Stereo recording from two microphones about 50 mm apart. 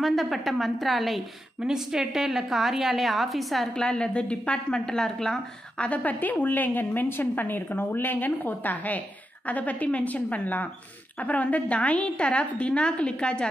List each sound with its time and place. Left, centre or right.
0.0 s a woman's voice: centre
1.6 s a woman's voice: centre
3.7 s a woman's voice: centre
5.9 s a woman's voice: left